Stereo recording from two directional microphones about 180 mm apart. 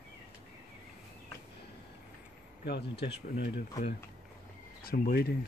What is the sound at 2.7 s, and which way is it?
Speech, 70° left (ahead or behind).